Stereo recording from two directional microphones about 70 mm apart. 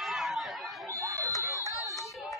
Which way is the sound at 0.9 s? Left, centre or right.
Right.